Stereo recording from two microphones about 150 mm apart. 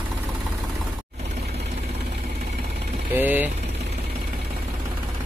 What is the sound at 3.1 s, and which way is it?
Speech, 10° right (ahead or behind).